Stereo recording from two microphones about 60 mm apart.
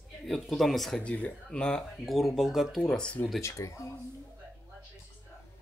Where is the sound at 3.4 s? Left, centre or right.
Left.